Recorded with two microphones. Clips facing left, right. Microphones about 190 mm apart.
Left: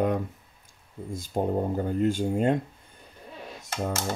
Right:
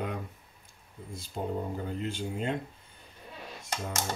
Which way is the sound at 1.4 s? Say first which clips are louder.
Left 7 dB; 55° left (ahead or behind).